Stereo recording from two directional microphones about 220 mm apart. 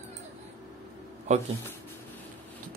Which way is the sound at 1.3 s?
35° right (ahead or behind).